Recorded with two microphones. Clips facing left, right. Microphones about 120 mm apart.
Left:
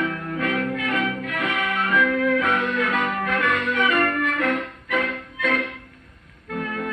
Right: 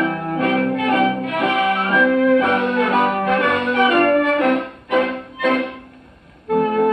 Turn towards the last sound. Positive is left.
turn(degrees=-40)  # may be behind; listen again after turning